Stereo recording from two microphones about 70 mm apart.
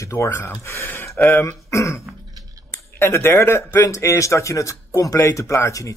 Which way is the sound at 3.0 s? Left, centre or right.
Left.